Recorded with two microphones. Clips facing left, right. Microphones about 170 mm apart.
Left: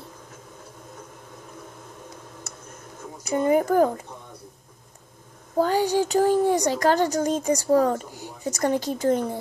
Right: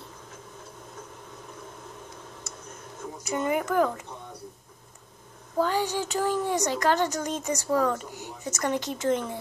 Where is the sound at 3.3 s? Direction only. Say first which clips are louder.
Left 7 dB; 35° left (ahead or behind).